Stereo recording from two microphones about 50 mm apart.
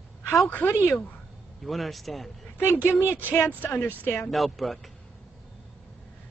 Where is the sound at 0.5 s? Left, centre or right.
Left.